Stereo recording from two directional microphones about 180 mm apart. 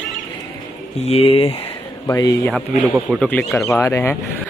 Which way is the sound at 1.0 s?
35° left (ahead or behind).